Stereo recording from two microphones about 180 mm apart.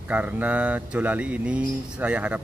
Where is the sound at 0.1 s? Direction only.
10° right (ahead or behind).